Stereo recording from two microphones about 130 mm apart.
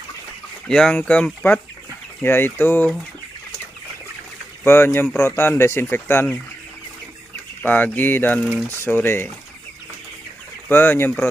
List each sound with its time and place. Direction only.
0.7 s speech: 5° left (ahead or behind)
4.6 s speech: 15° left (ahead or behind)
7.6 s speech: 15° left (ahead or behind)
10.7 s speech: 15° left (ahead or behind)